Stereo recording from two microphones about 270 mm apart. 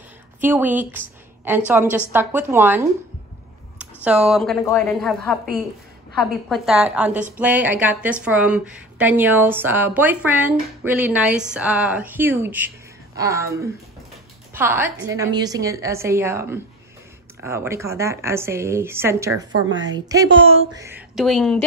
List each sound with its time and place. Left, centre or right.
0.4 s a woman's voice: centre; by 20.8 s right
20.8 s speech: centre